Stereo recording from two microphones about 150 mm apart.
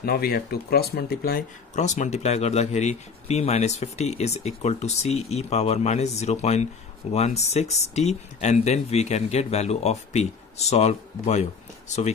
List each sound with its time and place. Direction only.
0.0 s speech: 90° left
1.8 s speech: 50° left (ahead or behind)